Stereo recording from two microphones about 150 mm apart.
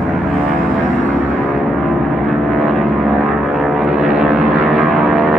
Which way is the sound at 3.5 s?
Centre (ahead or behind).